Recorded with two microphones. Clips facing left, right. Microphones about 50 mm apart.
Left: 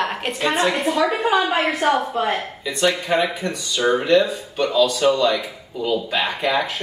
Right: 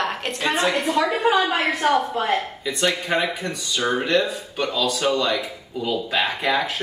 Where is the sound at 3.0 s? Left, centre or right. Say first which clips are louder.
Left 3 dB; centre.